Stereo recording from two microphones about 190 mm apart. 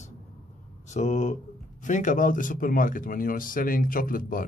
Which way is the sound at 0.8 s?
40° left (ahead or behind).